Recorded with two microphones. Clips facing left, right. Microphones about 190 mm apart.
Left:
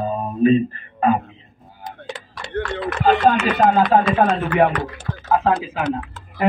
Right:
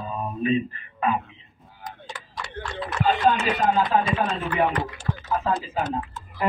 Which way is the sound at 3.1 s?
65° left (ahead or behind).